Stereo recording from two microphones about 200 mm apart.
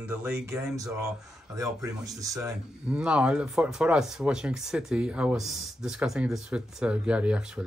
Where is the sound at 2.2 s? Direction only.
15° right (ahead or behind).